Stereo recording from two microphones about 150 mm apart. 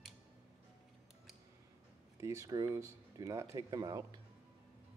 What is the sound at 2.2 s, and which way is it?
Speech, 20° right (ahead or behind).